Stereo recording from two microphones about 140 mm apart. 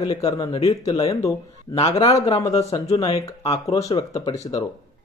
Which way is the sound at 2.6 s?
50° left (ahead or behind).